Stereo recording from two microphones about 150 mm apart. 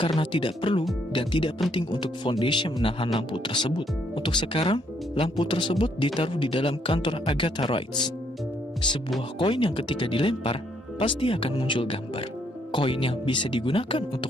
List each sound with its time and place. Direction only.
0.0 s speech: 35° left (ahead or behind)